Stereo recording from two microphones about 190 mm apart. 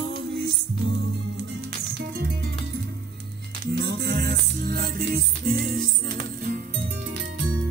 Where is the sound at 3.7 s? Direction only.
60° right (ahead or behind).